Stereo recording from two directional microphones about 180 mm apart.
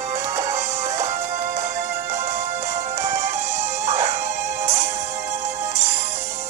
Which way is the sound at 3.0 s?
40° right (ahead or behind).